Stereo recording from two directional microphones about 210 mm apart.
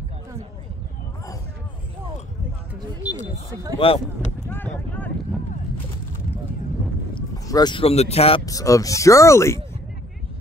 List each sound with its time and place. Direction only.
2.7 s speech: 5° right (ahead or behind)
3.8 s speech: 25° left (ahead or behind)
4.5 s a sound: 10° left (ahead or behind)
7.2 s speech: 15° left (ahead or behind)
8.5 s speech: 15° left (ahead or behind)